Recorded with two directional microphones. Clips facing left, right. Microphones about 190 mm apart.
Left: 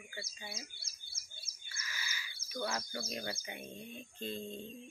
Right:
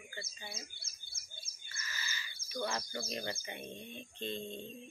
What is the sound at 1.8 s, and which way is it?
Bird, 10° left (ahead or behind).